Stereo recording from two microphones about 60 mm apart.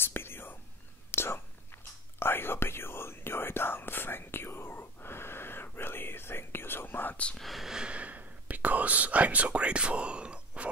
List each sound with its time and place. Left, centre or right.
0.0 s whispering: left
7.3 s whispering: centre
7.8 s whispering: right